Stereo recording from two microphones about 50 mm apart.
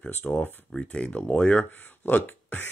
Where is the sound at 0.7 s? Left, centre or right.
Left.